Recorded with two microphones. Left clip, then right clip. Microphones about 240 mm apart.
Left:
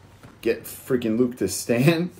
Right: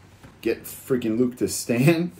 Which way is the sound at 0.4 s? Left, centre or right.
Centre.